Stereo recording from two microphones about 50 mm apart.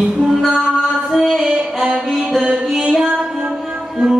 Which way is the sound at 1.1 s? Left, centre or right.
Centre.